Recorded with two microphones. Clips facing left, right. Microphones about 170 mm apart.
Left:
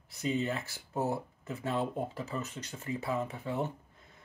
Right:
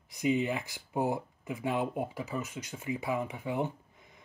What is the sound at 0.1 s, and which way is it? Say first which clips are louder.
Speech: right 3 dB; 15° right (ahead or behind).